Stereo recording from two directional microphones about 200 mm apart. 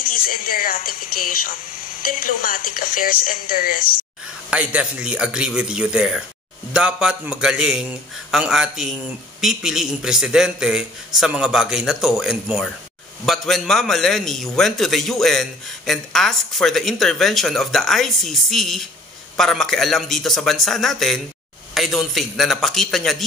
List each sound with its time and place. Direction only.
0.0 s speech: 45° left (ahead or behind)
4.5 s a man's voice: 5° right (ahead or behind)